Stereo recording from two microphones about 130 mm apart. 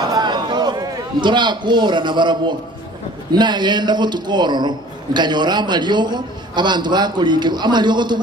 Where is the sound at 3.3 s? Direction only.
35° right (ahead or behind).